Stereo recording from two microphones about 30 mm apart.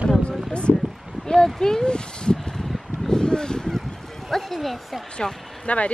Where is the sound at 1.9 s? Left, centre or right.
Left.